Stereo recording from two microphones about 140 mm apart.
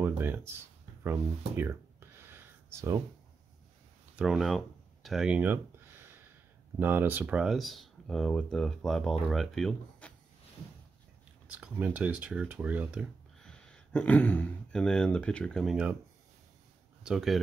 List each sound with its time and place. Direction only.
0.0 s speech: 15° right (ahead or behind)
1.0 s a sound: 15° right (ahead or behind)
4.2 s speech: centre (ahead or behind)
11.5 s speech: 10° right (ahead or behind)
13.4 s speech: 5° left (ahead or behind)
17.0 s speech: 5° right (ahead or behind)